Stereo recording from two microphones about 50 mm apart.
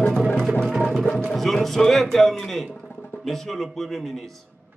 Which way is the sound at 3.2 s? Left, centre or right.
Centre.